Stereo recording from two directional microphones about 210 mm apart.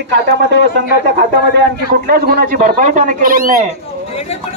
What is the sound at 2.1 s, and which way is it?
Speech, 45° right (ahead or behind).